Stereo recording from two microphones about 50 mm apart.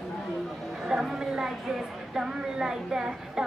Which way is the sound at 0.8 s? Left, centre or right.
Centre.